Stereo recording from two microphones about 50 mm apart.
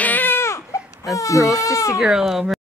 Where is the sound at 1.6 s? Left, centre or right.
Left.